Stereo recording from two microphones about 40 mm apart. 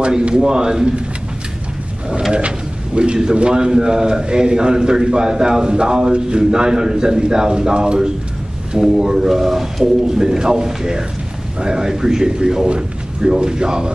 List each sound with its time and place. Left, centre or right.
0.5 s a man's voice: centre
2.3 s a man's voice: right
8.7 s a man's voice: centre